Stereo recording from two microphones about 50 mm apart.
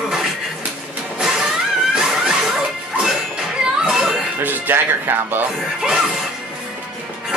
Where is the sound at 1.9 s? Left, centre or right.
Centre.